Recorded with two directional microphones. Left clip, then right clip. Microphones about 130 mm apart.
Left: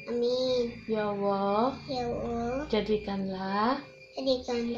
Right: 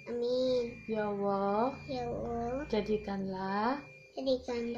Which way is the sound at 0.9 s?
5° right (ahead or behind).